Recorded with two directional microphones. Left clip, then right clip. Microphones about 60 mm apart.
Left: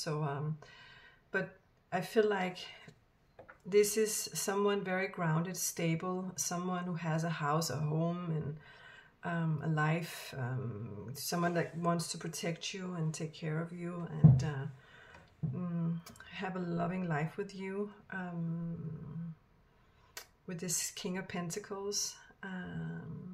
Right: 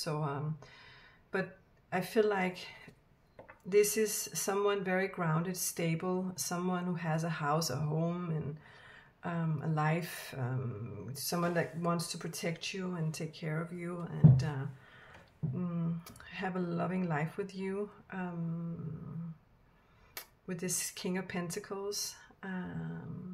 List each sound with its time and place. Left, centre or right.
0.0 s speech: centre
13.1 s speech: right
15.5 s speech: centre
20.2 s speech: centre